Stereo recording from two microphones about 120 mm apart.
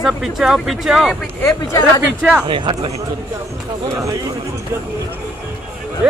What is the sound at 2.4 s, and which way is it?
Speech, 45° right (ahead or behind).